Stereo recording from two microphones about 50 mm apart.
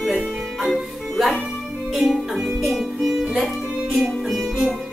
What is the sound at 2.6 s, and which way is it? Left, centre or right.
Music, centre.